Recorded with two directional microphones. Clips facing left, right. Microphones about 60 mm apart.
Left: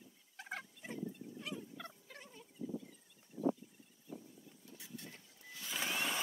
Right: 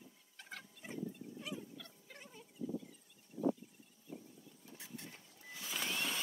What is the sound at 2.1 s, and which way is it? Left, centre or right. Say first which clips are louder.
Turkey: even; centre.